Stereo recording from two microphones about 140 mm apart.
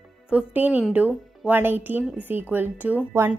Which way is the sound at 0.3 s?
10° right (ahead or behind).